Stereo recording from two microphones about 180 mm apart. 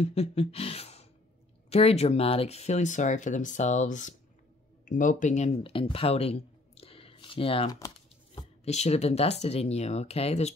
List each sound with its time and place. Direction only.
0.0 s speech: 35° left (ahead or behind)